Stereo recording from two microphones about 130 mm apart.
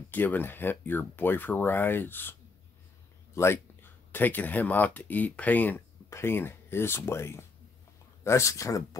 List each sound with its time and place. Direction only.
0.1 s speech: 15° left (ahead or behind)
3.3 s speech: 20° left (ahead or behind)